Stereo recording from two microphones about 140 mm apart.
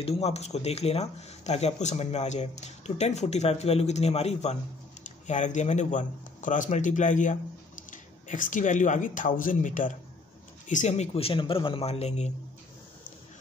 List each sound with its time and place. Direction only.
0.0 s speech: 45° left (ahead or behind)